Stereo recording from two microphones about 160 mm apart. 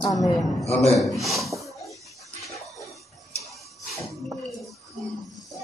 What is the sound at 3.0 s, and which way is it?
Tick-tock, centre (ahead or behind).